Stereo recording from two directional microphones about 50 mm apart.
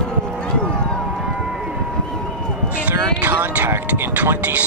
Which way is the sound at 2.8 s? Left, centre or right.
Right.